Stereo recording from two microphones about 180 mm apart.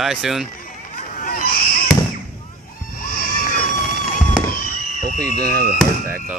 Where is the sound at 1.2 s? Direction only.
55° left (ahead or behind).